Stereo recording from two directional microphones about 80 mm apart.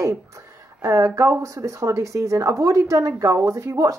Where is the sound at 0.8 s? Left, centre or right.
Right.